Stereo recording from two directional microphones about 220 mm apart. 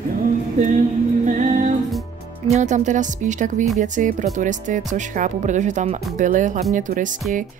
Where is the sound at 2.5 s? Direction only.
35° right (ahead or behind).